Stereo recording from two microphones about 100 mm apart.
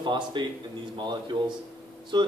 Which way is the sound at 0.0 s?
50° right (ahead or behind).